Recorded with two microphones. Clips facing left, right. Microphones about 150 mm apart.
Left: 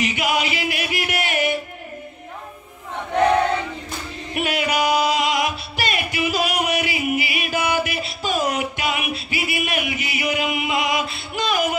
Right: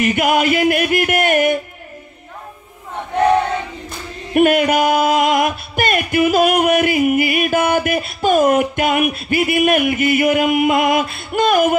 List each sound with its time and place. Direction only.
0.0 s music: 50° right (ahead or behind)
4.3 s music: 50° right (ahead or behind)